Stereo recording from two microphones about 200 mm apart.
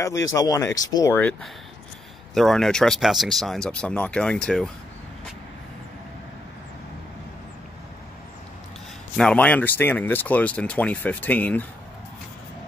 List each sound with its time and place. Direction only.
0.0 s speech: 15° left (ahead or behind)
9.1 s speech: 5° left (ahead or behind)